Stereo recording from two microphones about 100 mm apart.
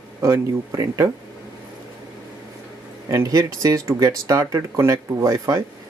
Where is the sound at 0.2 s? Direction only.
35° right (ahead or behind).